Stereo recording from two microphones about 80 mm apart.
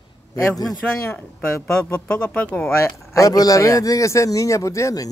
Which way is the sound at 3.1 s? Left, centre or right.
Left.